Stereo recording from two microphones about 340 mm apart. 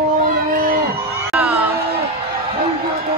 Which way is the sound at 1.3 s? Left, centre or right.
Centre.